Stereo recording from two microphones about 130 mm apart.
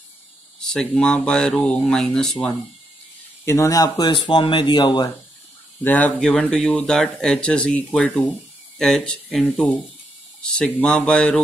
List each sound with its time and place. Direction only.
0.6 s speech: 5° left (ahead or behind)
3.4 s speech: 25° left (ahead or behind)
5.9 s speech: 10° left (ahead or behind)